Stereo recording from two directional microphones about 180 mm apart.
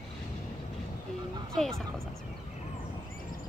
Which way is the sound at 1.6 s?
Centre (ahead or behind).